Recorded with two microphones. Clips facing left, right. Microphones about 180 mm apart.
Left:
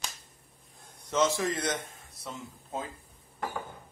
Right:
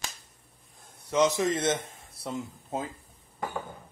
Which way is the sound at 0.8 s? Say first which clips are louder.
Right 3 dB; 10° right (ahead or behind).